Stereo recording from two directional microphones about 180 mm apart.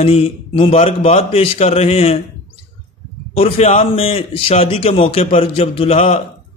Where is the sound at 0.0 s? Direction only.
35° left (ahead or behind).